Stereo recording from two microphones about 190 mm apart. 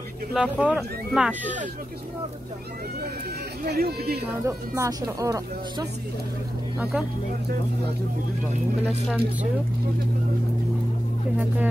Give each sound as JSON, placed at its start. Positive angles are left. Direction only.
{"t": 0.3, "sound": "speech", "side_deg": -5}
{"t": 3.6, "sound": "speech", "side_deg": -55}
{"t": 4.5, "sound": "speech", "side_deg": -15}
{"t": 6.8, "sound": "speech", "side_deg": -5}
{"t": 8.8, "sound": "speech", "side_deg": -5}
{"t": 11.3, "sound": "speech", "side_deg": -10}